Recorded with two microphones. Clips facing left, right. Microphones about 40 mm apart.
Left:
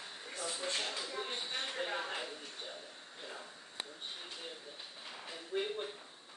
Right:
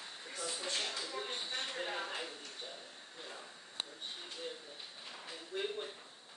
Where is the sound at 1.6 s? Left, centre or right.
Centre.